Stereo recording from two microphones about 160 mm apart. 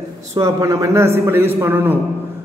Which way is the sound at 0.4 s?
20° right (ahead or behind).